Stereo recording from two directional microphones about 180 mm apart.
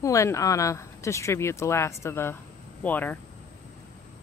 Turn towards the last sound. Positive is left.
turn(degrees=10)  # may be behind; listen again after turning